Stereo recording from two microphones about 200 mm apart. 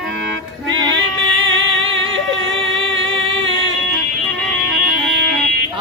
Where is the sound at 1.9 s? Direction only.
25° right (ahead or behind).